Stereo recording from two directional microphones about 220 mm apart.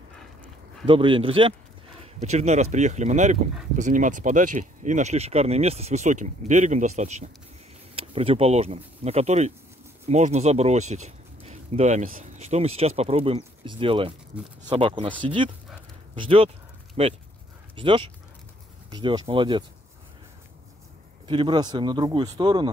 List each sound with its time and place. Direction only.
0.8 s speech: 25° right (ahead or behind)
21.3 s speech: 20° right (ahead or behind)